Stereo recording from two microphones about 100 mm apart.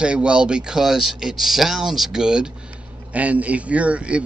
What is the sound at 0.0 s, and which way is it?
A man's voice, 10° right (ahead or behind).